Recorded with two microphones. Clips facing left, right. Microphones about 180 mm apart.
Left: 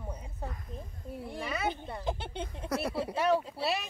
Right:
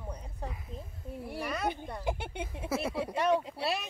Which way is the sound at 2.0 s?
10° right (ahead or behind).